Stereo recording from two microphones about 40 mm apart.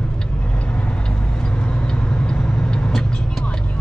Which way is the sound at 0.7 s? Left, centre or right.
Left.